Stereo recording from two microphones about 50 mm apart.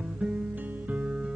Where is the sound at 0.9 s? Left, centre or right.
Right.